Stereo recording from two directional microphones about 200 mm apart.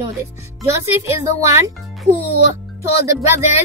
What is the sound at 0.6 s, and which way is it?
Speech, 15° right (ahead or behind).